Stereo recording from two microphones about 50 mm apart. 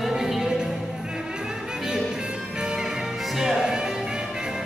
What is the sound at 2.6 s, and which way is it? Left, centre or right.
Music, centre.